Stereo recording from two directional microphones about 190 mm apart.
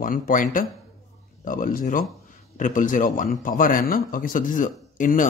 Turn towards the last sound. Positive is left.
turn(degrees=45)  # may be behind; listen again after turning